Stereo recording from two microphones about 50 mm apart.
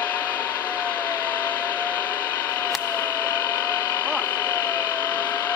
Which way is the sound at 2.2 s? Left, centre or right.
Left.